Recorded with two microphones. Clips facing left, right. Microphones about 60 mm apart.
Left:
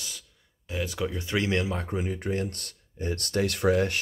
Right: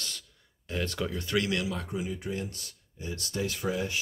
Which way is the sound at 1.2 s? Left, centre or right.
Left.